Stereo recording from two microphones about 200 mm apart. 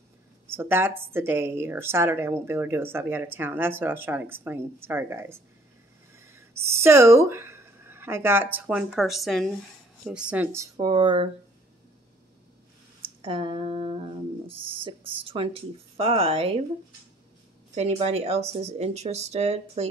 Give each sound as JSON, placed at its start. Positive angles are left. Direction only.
{"t": 0.5, "sound": "a woman's voice", "side_deg": -10}
{"t": 13.2, "sound": "speech", "side_deg": -25}
{"t": 17.7, "sound": "speech", "side_deg": -30}